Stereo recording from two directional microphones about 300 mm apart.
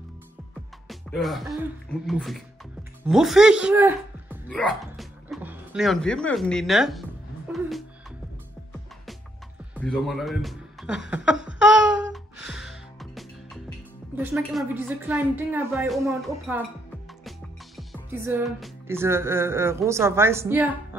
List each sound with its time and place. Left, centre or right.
0.8 s speech: centre
7.5 s music: centre
9.8 s speech: centre
11.5 s music: centre
17.7 s music: centre